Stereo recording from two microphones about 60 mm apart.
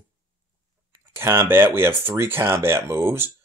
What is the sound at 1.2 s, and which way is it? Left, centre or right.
Speech, right.